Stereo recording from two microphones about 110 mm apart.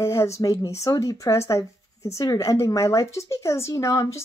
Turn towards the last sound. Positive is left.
turn(degrees=30)  # may be behind; listen again after turning